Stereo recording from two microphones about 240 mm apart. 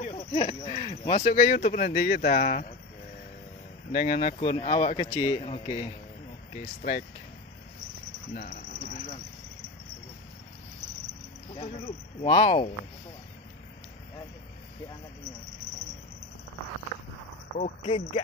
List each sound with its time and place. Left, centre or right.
0.0 s speech: left
3.9 s speech: left
8.4 s a sound: left
11.5 s speech: left
17.6 s speech: left